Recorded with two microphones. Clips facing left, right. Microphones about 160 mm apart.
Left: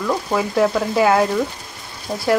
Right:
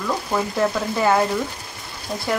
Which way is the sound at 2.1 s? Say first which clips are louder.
Left 3 dB; 30° left (ahead or behind).